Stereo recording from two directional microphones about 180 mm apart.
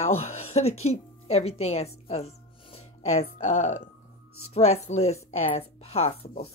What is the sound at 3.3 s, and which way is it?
A woman's voice, 40° left (ahead or behind).